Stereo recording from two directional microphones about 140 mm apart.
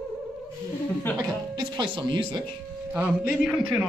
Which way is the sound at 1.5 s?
35° right (ahead or behind).